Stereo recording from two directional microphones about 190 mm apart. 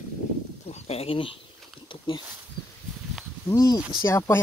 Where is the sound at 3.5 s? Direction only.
15° left (ahead or behind).